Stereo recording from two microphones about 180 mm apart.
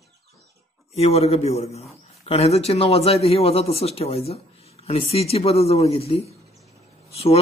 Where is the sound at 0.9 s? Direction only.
35° left (ahead or behind).